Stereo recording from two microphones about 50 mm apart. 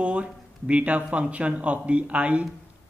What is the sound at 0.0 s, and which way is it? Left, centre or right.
A man's voice, right.